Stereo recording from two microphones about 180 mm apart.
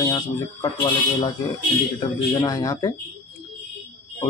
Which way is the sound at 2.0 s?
20° left (ahead or behind).